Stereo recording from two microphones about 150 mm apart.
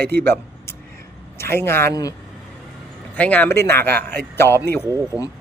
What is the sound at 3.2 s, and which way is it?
Speech, 10° left (ahead or behind).